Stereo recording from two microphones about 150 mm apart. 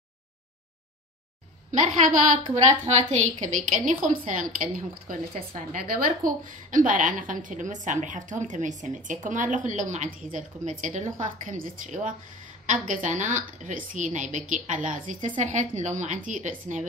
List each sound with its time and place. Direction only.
1.7 s a woman's voice: 55° right (ahead or behind)